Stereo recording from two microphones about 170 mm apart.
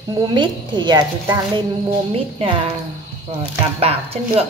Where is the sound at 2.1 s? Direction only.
35° right (ahead or behind).